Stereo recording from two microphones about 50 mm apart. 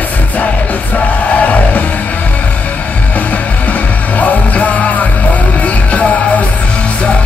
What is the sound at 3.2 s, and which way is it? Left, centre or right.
Music, left.